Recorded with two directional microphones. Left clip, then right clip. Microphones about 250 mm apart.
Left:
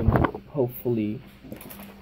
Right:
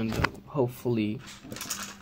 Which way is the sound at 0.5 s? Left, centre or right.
Right.